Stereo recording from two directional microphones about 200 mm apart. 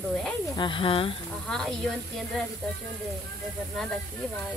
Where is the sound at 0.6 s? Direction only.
25° left (ahead or behind).